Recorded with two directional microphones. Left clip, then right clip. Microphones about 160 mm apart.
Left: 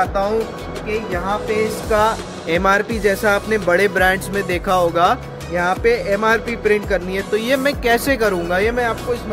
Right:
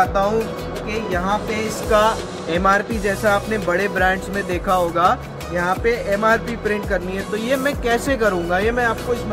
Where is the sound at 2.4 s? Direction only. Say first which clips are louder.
Left 1 dB; 40° left (ahead or behind).